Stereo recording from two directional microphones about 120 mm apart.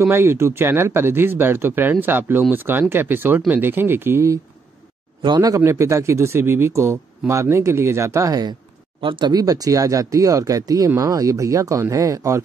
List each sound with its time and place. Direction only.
0.0 s speech: 20° right (ahead or behind)
5.2 s speech: 35° right (ahead or behind)
5.6 s speech: 25° right (ahead or behind)